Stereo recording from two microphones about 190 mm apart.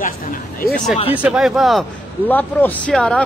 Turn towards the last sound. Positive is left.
turn(degrees=5)  # may be behind; listen again after turning